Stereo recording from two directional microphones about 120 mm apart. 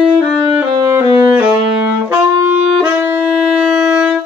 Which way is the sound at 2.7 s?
10° right (ahead or behind).